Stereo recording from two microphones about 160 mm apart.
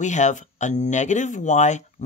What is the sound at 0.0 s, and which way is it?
Speech, 50° left (ahead or behind).